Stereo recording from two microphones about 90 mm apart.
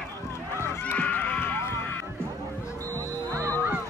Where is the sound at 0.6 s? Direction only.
30° left (ahead or behind).